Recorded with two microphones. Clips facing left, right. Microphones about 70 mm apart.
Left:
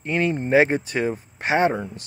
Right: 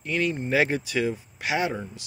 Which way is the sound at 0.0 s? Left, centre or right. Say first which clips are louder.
Left 4 dB; left.